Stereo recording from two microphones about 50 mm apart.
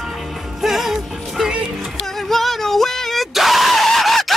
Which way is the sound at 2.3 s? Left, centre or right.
Centre.